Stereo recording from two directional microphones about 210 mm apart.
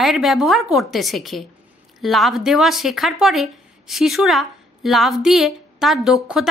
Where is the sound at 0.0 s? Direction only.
Centre (ahead or behind).